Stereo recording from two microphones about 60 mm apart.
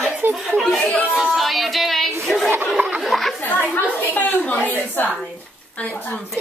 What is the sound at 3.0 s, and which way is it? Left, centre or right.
Chatter, centre.